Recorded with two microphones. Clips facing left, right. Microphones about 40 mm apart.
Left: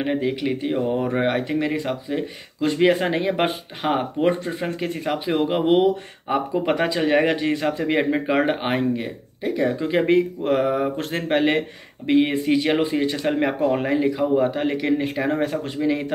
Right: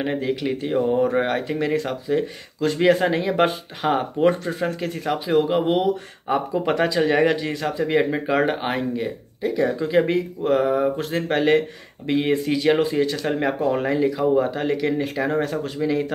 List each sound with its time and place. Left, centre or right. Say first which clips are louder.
0.0 s speech: left 1 dB; centre
1.0 s speech: right 1 dB; left
6.2 s speech: even; centre
11.0 s speech: right 1 dB; left
11.2 s speech: right 1 dB; left
15.4 s speech: left 1 dB; left